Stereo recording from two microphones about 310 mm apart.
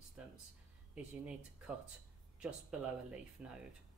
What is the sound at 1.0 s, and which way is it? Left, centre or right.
Speech, centre.